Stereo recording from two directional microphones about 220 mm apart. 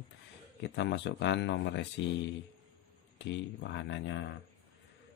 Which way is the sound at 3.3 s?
55° left (ahead or behind).